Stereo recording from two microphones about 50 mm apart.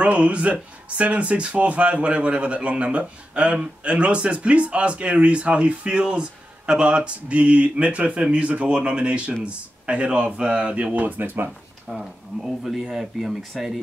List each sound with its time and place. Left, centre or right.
0.0 s speech: right
10.9 s speech: right
11.9 s speech: centre